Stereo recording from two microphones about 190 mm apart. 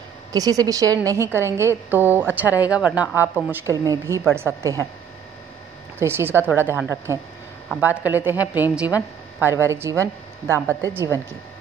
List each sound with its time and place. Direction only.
0.3 s a woman's voice: 20° right (ahead or behind)
5.9 s a woman's voice: 10° right (ahead or behind)